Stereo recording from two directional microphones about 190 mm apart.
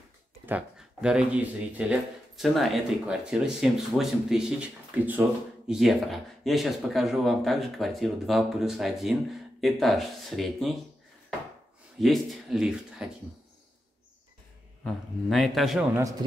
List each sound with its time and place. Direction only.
0.5 s speech: 5° right (ahead or behind)
12.0 s speech: centre (ahead or behind)
14.8 s speech: centre (ahead or behind)
15.9 s speech: 15° right (ahead or behind)